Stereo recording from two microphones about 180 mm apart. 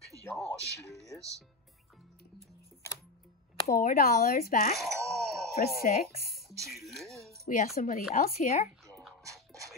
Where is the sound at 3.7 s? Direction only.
55° left (ahead or behind).